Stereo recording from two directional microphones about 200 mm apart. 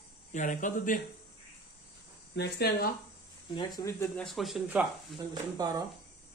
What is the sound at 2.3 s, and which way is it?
Speech, 55° left (ahead or behind).